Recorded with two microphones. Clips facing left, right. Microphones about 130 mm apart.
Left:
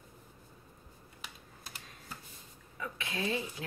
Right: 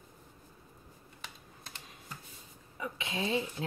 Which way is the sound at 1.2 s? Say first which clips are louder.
Even; 5° left (ahead or behind).